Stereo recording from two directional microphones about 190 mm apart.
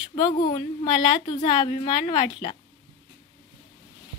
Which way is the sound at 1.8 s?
25° left (ahead or behind).